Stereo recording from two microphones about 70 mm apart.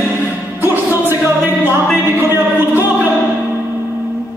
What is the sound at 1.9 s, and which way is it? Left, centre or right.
Music, right.